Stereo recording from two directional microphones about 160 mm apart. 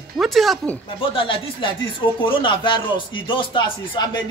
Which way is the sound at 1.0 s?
35° left (ahead or behind).